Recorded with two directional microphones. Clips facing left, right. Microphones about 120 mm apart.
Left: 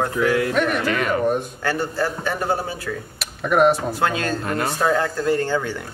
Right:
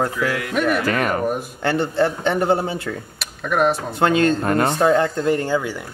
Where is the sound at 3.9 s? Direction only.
25° right (ahead or behind).